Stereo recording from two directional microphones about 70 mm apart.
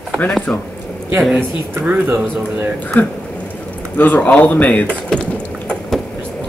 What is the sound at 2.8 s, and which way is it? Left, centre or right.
Speech, left.